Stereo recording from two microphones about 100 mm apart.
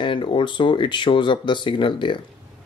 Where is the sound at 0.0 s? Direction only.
55° left (ahead or behind).